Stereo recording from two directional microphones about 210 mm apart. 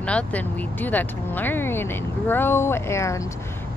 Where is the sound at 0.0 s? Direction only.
5° left (ahead or behind).